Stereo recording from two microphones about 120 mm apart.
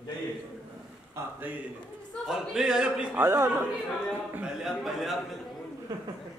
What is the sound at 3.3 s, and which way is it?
Speech, 20° right (ahead or behind).